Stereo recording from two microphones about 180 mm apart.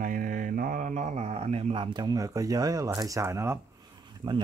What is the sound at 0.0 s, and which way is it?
Mantra, 50° right (ahead or behind).